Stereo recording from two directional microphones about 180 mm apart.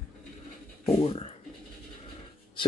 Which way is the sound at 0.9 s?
35° left (ahead or behind).